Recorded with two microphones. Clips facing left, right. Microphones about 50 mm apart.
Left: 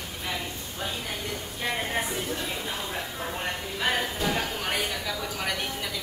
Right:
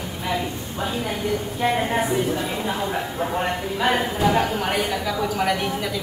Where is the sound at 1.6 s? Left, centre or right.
Centre.